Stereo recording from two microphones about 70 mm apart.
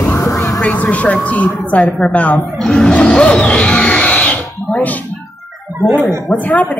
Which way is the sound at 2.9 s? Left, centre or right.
Centre.